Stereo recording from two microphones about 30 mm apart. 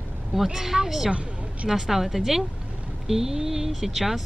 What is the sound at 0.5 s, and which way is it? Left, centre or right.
Speech, centre.